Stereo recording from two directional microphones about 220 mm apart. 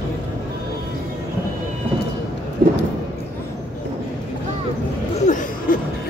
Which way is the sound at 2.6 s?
45° right (ahead or behind).